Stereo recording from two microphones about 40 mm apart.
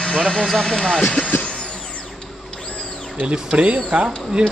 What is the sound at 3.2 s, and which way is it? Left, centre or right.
Speech, right.